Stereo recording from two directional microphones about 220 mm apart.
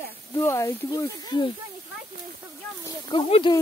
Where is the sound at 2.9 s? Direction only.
20° left (ahead or behind).